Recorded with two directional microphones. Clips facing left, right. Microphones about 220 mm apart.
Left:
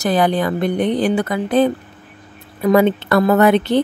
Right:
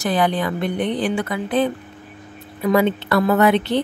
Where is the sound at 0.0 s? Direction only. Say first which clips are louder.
Left 3 dB; 40° left (ahead or behind).